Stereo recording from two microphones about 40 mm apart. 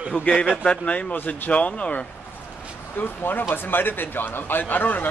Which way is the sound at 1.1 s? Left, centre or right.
Left.